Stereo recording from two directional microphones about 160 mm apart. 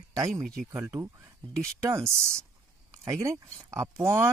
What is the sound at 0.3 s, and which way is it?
Speech, centre (ahead or behind).